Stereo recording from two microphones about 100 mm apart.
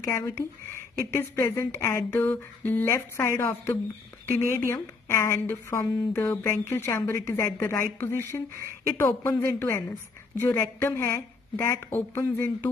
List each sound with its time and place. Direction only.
0.9 s speech: 30° left (ahead or behind)